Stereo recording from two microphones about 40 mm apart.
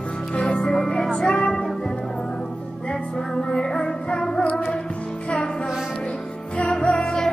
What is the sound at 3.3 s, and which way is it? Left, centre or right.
Music, centre.